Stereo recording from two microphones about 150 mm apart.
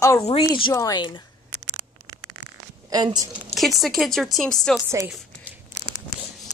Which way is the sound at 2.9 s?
25° right (ahead or behind).